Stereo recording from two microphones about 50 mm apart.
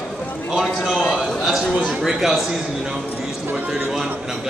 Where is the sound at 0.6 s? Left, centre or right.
Centre.